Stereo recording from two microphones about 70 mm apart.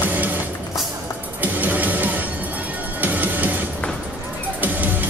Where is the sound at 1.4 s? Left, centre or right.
Right.